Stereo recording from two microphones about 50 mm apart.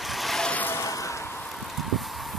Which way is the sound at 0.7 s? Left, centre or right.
Left.